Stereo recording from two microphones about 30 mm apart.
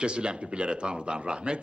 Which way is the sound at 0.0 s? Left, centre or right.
Right.